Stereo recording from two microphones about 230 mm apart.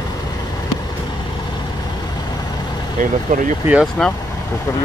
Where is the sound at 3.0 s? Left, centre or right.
Right.